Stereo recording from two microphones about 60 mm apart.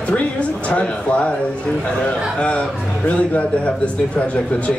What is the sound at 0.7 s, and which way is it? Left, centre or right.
A man's voice, left.